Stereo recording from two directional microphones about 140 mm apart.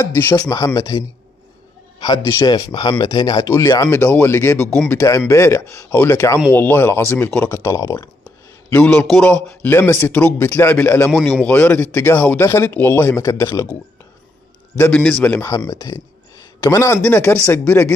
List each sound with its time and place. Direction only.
0.0 s speech: 15° left (ahead or behind)
8.6 s speech: 10° left (ahead or behind)
11.1 s speech: centre (ahead or behind); by 13.7 s 20° left (ahead or behind)
14.8 s speech: 10° left (ahead or behind)
15.4 s speech: 25° left (ahead or behind)